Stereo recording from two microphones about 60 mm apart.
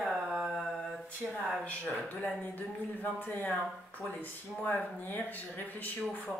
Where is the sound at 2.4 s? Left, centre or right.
Left.